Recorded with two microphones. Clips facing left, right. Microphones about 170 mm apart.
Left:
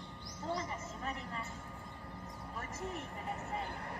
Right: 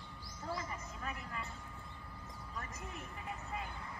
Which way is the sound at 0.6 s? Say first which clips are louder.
Left 3 dB; 30° left (ahead or behind).